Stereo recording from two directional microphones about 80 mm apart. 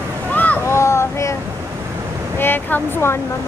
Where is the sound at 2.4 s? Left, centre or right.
Left.